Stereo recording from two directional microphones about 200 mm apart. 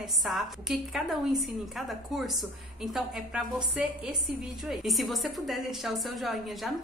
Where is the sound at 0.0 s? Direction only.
Centre (ahead or behind).